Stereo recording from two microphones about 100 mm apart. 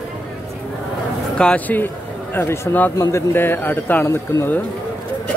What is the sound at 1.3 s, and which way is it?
Speech, 10° left (ahead or behind).